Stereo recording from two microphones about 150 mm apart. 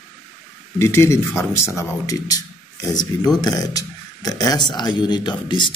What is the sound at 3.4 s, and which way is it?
Speech, 25° left (ahead or behind).